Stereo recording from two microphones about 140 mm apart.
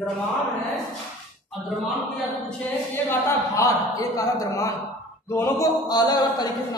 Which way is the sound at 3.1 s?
25° left (ahead or behind).